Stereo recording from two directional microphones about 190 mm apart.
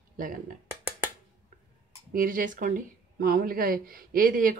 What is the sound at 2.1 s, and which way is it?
Speech, 50° right (ahead or behind).